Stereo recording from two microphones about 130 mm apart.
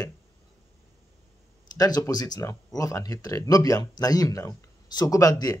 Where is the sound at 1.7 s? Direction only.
30° left (ahead or behind).